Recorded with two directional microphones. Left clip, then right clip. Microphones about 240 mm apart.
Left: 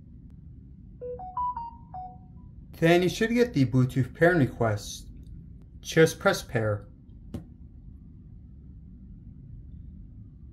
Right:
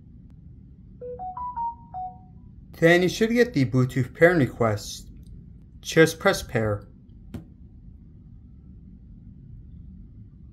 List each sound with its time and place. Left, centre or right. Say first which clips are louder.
0.9 s music: even; centre
2.7 s speech: right 4 dB; centre